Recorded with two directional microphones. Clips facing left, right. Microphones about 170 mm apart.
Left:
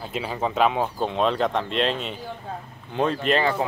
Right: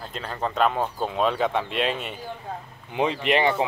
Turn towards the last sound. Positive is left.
turn(degrees=-15)  # may be behind; listen again after turning